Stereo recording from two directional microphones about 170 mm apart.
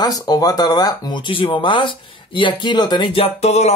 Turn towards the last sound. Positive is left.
turn(degrees=40)  # may be behind; listen again after turning